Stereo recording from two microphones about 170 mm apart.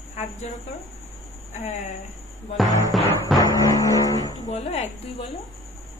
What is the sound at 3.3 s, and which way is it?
Music, 20° left (ahead or behind).